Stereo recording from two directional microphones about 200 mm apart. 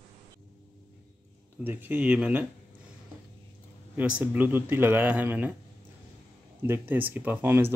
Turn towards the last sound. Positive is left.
turn(degrees=-10)  # may be behind; listen again after turning